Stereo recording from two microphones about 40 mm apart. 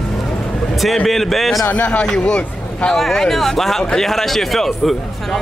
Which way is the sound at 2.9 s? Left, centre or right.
Centre.